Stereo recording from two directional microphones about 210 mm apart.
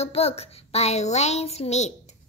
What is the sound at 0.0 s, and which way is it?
A child's voice, 30° left (ahead or behind).